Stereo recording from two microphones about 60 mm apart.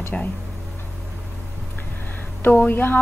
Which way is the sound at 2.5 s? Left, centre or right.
Left.